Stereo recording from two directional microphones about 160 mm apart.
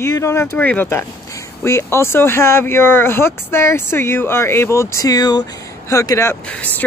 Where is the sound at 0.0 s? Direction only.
20° left (ahead or behind).